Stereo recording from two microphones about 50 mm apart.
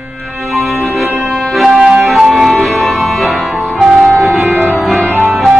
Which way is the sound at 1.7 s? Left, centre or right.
Centre.